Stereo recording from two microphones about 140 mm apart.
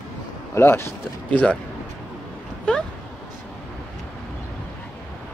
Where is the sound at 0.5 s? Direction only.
20° left (ahead or behind).